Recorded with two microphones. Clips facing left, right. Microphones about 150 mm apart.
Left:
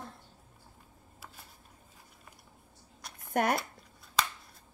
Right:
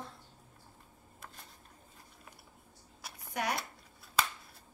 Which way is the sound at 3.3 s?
55° left (ahead or behind).